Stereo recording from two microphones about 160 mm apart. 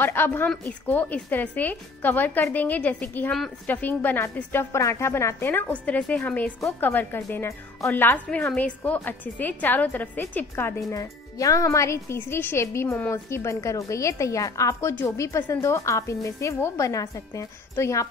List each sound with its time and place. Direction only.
0.0 s a woman's voice: 15° left (ahead or behind)